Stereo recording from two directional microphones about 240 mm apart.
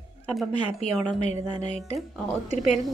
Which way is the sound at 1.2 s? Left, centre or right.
Left.